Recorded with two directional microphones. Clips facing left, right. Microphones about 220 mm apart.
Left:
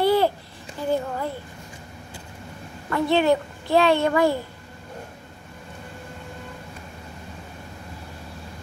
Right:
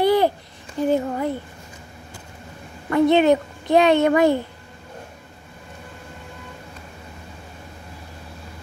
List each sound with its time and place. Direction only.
0.0 s babbling: 15° right (ahead or behind)
0.9 s a sound: 20° right (ahead or behind)
2.9 s a child's voice: 20° right (ahead or behind)